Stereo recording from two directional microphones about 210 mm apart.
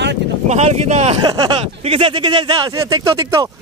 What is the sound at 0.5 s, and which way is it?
Speech, 35° right (ahead or behind).